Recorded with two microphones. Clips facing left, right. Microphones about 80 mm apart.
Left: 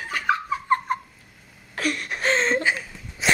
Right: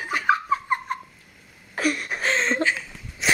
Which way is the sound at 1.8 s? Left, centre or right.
Centre.